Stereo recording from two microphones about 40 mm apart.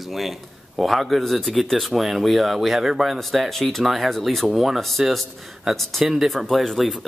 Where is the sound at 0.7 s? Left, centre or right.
Centre.